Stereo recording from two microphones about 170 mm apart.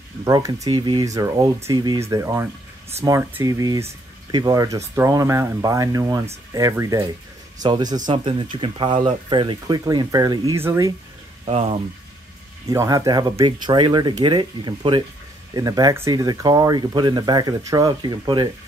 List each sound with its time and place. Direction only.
0.2 s speech: 20° right (ahead or behind)
11.4 s speech: 35° right (ahead or behind)
12.6 s speech: 20° right (ahead or behind)